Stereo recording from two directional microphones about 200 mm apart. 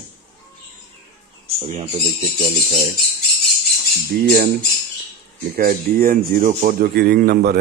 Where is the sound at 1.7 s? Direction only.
30° right (ahead or behind).